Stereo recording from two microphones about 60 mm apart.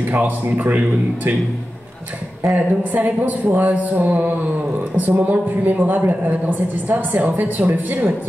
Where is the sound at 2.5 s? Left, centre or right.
Right.